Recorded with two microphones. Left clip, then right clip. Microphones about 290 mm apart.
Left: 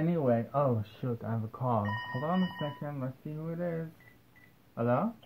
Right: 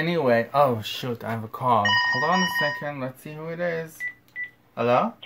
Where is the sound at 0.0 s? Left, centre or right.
Centre.